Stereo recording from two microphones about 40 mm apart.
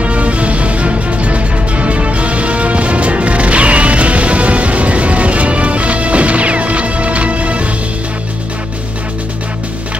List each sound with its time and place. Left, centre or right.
0.0 s music: right